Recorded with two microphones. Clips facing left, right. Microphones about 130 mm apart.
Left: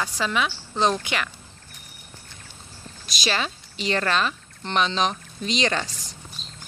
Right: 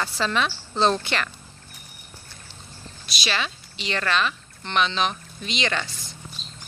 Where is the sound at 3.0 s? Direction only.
40° left (ahead or behind).